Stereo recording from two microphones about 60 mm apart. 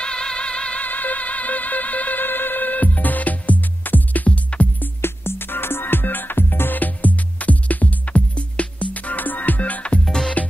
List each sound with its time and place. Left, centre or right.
0.0 s music: centre
0.8 s music: left
5.0 s music: left
10.0 s music: centre